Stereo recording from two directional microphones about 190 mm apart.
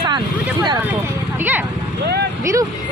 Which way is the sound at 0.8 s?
10° right (ahead or behind).